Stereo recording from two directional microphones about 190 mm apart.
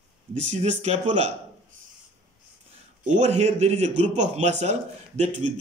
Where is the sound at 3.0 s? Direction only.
35° right (ahead or behind).